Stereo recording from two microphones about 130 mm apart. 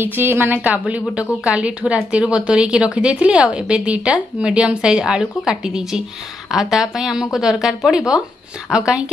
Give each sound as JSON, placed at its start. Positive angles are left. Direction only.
{"t": 0.0, "sound": "a woman's voice", "side_deg": -15}